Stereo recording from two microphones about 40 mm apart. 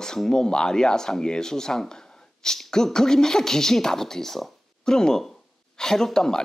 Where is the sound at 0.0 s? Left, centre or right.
Centre.